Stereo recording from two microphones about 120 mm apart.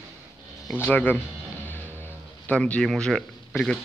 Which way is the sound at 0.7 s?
15° left (ahead or behind).